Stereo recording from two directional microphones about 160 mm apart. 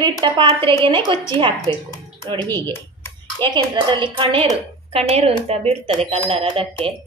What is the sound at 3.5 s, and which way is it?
A woman's voice, 30° right (ahead or behind).